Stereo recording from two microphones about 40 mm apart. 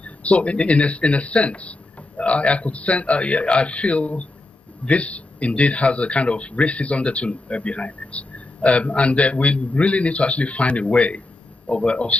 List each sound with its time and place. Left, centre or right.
0.0 s speech: left